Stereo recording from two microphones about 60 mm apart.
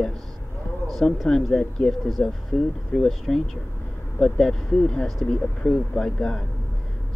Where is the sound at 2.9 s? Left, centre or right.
Centre.